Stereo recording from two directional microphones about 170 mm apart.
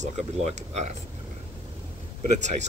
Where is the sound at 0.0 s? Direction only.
40° right (ahead or behind).